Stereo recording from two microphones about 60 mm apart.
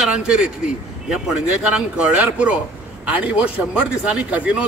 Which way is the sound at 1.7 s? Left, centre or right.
Centre.